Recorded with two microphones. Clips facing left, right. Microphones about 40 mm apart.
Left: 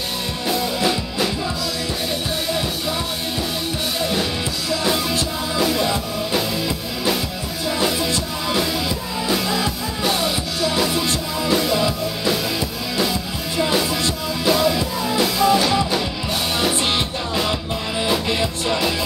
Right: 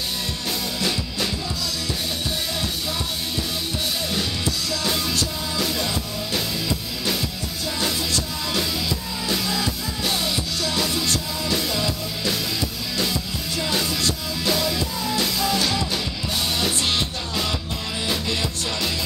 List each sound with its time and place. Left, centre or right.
4.1 s music: centre
9.3 s music: centre
14.4 s music: centre
18.0 s music: centre